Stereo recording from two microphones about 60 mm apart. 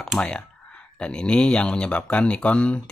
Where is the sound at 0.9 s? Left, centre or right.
Centre.